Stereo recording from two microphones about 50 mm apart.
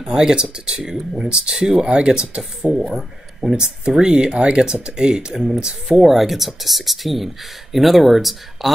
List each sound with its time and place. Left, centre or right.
0.0 s speech: centre
2.9 s speech: centre